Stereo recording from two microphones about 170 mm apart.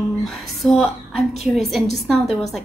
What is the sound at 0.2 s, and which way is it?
A woman's voice, centre (ahead or behind).